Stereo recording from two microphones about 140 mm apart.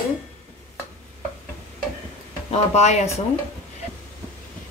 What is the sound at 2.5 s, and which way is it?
Speech, 50° left (ahead or behind).